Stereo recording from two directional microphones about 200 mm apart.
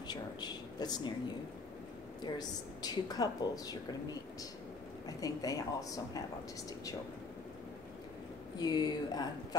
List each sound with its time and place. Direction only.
0.1 s a woman's voice: 20° left (ahead or behind)
2.3 s a woman's voice: 20° left (ahead or behind)
8.5 s a woman's voice: 20° left (ahead or behind)